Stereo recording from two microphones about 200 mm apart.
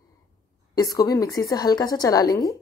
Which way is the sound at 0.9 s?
15° left (ahead or behind).